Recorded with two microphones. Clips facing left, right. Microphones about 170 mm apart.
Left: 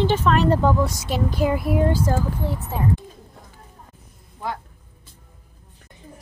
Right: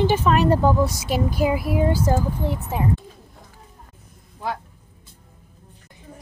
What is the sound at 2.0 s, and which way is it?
Speech, 20° right (ahead or behind).